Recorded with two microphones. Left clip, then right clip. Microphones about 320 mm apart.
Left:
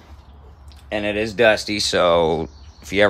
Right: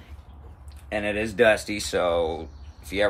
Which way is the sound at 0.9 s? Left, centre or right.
Left.